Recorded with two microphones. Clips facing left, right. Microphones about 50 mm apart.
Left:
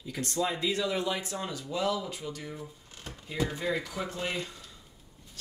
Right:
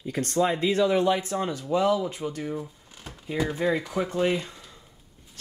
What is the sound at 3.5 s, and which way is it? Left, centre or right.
Speech, right.